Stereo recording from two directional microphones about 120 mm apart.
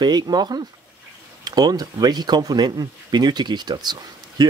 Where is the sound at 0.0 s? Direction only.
35° right (ahead or behind).